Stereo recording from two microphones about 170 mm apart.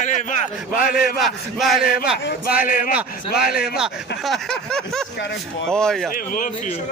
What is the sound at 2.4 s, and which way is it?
Speech, 55° left (ahead or behind).